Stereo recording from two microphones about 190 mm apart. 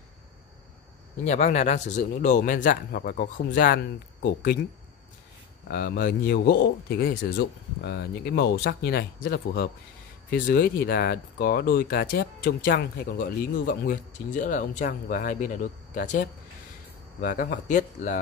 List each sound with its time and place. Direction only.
1.2 s speech: 35° left (ahead or behind)
5.7 s a man's voice: 50° left (ahead or behind)